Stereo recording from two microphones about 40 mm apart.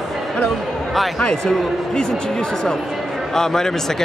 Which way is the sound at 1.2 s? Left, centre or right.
Centre.